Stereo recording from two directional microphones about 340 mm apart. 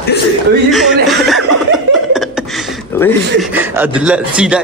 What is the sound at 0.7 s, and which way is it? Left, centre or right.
Speech, centre.